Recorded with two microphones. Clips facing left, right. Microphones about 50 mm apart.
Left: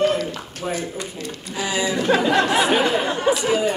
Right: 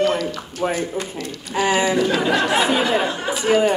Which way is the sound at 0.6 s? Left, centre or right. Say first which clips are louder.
Right 5 dB; right.